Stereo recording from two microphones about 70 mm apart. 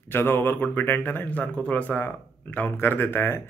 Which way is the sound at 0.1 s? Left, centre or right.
Left.